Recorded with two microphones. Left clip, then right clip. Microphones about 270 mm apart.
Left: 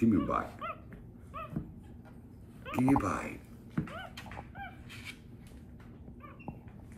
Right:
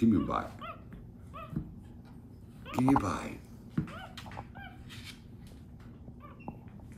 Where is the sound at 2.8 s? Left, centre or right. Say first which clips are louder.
Right 1 dB; centre.